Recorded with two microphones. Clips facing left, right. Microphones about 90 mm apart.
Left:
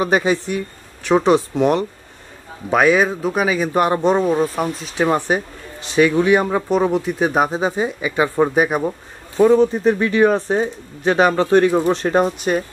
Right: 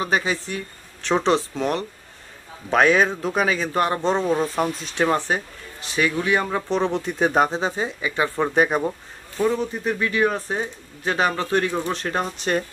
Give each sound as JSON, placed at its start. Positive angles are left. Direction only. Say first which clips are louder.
{"t": 0.0, "sound": "speech", "louder": "left 6 dB", "side_deg": 20}
{"t": 2.7, "sound": "speech", "louder": "left 3 dB", "side_deg": 5}
{"t": 9.4, "sound": "speech", "louder": "left 10 dB", "side_deg": 25}